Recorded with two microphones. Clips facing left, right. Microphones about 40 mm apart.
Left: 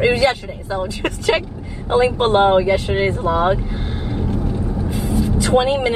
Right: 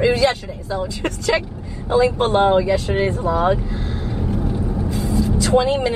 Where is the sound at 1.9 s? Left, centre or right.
Left.